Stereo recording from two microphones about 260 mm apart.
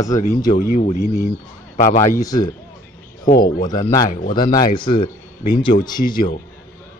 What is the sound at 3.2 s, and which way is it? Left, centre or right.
Speech, left.